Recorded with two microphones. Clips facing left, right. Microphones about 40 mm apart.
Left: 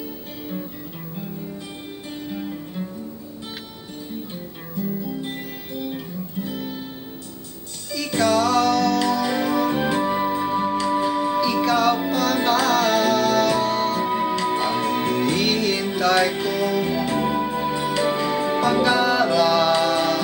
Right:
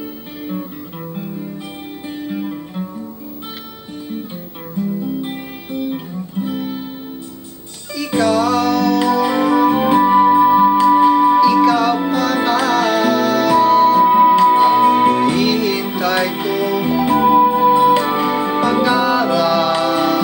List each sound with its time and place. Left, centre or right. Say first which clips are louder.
2.2 s music: right 6 dB; right
5.2 s music: right 5 dB; centre
8.2 s music: right 3 dB; centre
11.4 s music: right 7 dB; centre
14.0 s music: right 12 dB; right
15.3 s music: right 5 dB; centre; by 18.6 s right
18.6 s music: right 3 dB; centre